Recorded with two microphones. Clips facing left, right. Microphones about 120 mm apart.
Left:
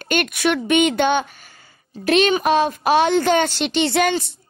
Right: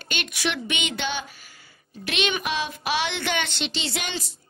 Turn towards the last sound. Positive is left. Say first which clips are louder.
# left 13 dB
turn(degrees=55)  # may be behind; listen again after turning